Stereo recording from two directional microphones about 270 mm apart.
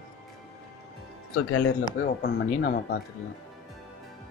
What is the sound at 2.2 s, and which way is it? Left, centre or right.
Speech, left.